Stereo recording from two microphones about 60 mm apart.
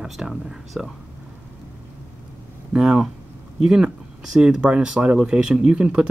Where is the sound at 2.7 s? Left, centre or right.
Centre.